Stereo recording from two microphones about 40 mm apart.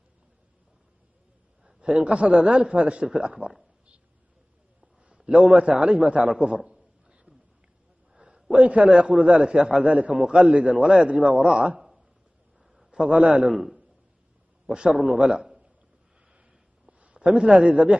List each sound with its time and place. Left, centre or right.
2.0 s a man's voice: right
2.4 s a man's voice: right
5.1 s a man's voice: right
6.4 s a sound: right
8.5 s a man's voice: right
8.8 s a man's voice: right
10.1 s a man's voice: right
12.9 s a man's voice: right
13.5 s a man's voice: centre
14.7 s a man's voice: centre
17.0 s a sound: right
17.4 s a man's voice: centre
17.6 s a man's voice: right